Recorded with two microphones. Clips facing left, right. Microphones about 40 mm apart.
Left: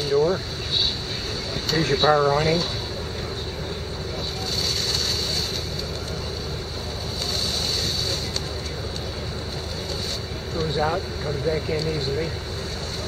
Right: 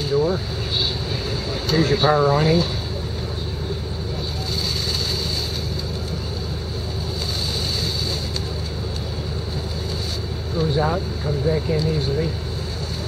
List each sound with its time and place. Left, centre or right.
0.1 s speech: centre
1.7 s speech: centre
10.6 s speech: centre